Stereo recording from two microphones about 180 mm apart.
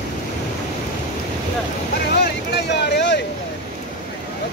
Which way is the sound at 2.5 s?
70° left (ahead or behind).